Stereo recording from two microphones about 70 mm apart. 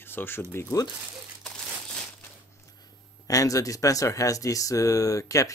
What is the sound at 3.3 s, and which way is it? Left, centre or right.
Speech, left.